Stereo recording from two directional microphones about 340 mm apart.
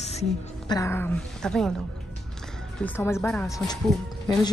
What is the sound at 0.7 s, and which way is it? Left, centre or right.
Speech, centre.